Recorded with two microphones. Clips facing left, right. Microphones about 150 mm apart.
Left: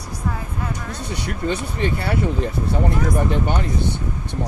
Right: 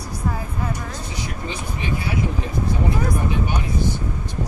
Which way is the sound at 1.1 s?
65° left (ahead or behind).